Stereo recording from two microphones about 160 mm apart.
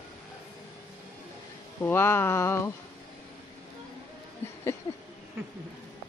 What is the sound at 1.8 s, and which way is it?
Speech, 15° left (ahead or behind).